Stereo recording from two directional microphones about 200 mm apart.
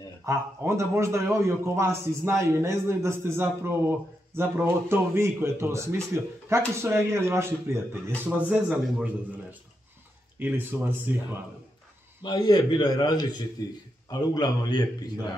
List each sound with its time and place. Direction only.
0.2 s speech: 15° right (ahead or behind)
12.2 s a man's voice: 20° left (ahead or behind)